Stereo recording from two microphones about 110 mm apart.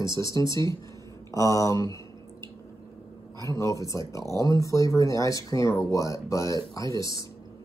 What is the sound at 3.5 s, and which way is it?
Speech, 30° left (ahead or behind).